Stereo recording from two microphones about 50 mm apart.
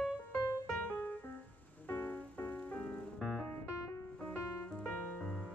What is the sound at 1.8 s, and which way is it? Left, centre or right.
Music, left.